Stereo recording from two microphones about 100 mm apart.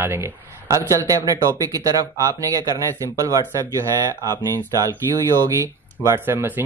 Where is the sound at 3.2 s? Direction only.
35° right (ahead or behind).